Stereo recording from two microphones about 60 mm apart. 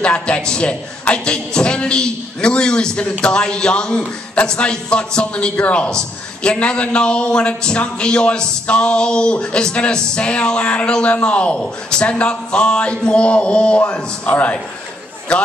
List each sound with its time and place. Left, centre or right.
0.0 s speech: centre